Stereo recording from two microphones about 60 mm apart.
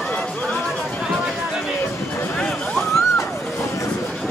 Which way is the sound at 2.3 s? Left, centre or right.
Centre.